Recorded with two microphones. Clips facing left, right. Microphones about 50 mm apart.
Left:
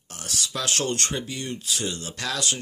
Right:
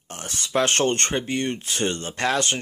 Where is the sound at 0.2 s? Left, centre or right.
Right.